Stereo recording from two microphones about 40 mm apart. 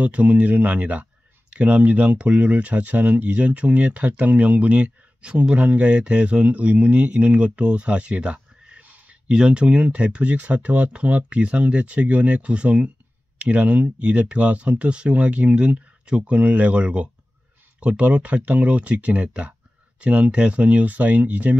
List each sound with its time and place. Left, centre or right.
0.0 s speech: right
8.8 s a sound: right
9.3 s speech: right
10.3 s speech: right